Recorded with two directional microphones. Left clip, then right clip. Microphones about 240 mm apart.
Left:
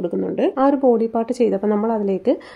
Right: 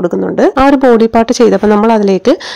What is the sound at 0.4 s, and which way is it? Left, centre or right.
A woman's voice, right.